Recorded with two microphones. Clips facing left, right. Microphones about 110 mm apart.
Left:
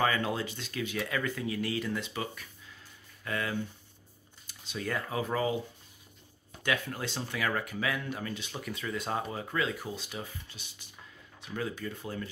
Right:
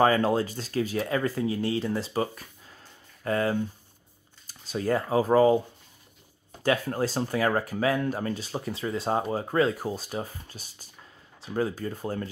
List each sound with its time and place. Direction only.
0.0 s speech: 35° right (ahead or behind)
6.6 s speech: 35° right (ahead or behind)